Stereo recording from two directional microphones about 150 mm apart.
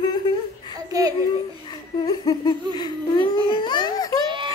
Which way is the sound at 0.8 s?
25° right (ahead or behind).